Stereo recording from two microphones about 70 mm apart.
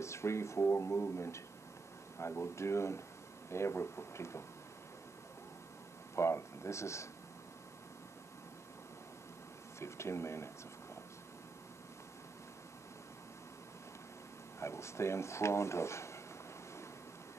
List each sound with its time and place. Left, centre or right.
0.0 s speech: left
6.1 s speech: left
9.8 s speech: left
14.6 s speech: left